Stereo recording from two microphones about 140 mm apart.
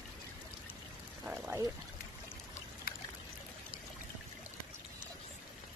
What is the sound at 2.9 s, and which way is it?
Trickle, 90° left.